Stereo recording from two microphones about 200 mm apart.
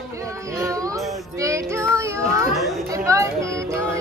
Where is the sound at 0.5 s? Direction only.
15° right (ahead or behind).